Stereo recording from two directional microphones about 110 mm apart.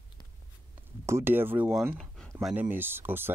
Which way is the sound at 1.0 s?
20° right (ahead or behind).